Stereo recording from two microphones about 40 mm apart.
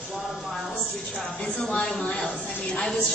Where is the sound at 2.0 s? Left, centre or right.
Left.